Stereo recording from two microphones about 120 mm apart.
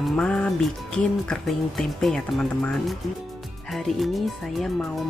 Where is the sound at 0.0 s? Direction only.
5° left (ahead or behind).